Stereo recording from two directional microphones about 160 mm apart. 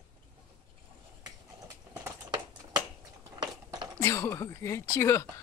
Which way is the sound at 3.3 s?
30° right (ahead or behind).